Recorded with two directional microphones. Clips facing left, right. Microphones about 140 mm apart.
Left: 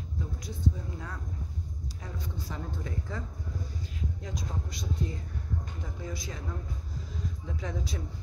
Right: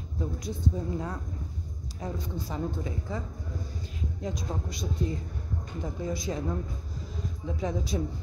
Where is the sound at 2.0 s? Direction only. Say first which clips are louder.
Right 7 dB; 20° right (ahead or behind).